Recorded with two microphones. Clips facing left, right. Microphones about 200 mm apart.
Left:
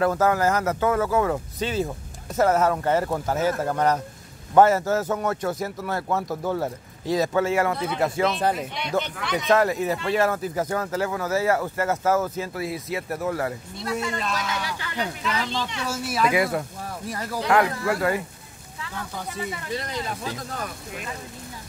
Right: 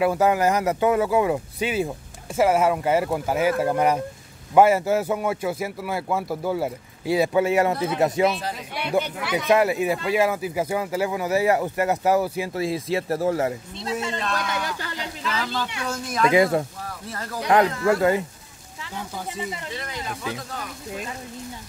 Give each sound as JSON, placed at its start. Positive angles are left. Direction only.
{"t": 0.0, "sound": "speech", "side_deg": -15}
{"t": 7.7, "sound": "speech", "side_deg": -5}
{"t": 12.5, "sound": "speech", "side_deg": -25}
{"t": 14.6, "sound": "speech", "side_deg": -40}
{"t": 15.2, "sound": "speech", "side_deg": -5}
{"t": 15.8, "sound": "speech", "side_deg": 5}
{"t": 16.3, "sound": "speech", "side_deg": -25}
{"t": 17.1, "sound": "speech", "side_deg": 15}
{"t": 17.4, "sound": "speech", "side_deg": -20}
{"t": 18.9, "sound": "speech", "side_deg": -10}
{"t": 19.7, "sound": "speech", "side_deg": 35}